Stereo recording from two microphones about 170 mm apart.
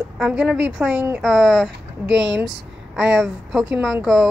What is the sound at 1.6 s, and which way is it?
Speech, 90° right.